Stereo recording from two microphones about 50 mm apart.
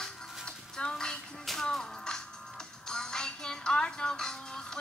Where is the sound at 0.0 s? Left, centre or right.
Centre.